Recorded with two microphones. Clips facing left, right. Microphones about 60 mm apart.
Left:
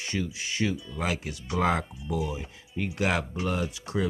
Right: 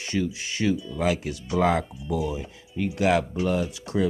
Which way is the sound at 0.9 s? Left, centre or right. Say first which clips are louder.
Right 6 dB; left.